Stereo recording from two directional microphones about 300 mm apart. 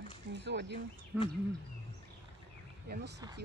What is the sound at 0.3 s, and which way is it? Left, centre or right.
Speech, right.